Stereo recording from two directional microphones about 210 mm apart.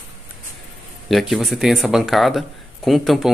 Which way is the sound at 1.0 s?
Centre (ahead or behind).